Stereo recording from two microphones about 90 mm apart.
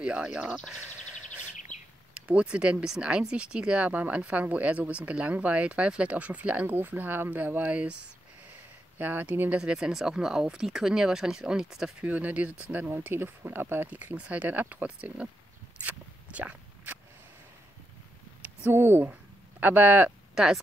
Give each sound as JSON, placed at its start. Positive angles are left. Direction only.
{"t": 0.0, "sound": "speech", "side_deg": -10}
{"t": 0.7, "sound": "a sound", "side_deg": -10}
{"t": 2.1, "sound": "speech", "side_deg": -15}
{"t": 8.9, "sound": "speech", "side_deg": -20}
{"t": 9.6, "sound": "speech", "side_deg": -10}
{"t": 15.8, "sound": "zipper", "side_deg": -15}
{"t": 18.4, "sound": "speech", "side_deg": -25}